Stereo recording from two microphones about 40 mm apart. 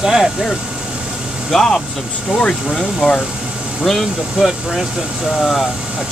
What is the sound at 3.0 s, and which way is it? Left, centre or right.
Speech, right.